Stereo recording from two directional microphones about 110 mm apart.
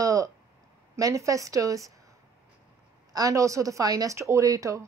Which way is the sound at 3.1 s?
30° right (ahead or behind).